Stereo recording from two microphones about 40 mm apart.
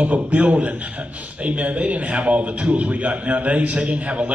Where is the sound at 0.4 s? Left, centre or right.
Right.